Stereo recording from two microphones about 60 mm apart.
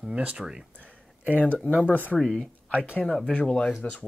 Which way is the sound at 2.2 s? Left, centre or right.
Centre.